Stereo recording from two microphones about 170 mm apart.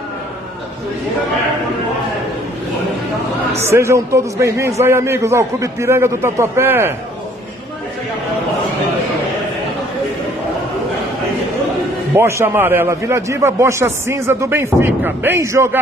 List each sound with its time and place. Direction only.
3.5 s a man's voice: 15° right (ahead or behind)
12.2 s a man's voice: 15° right (ahead or behind)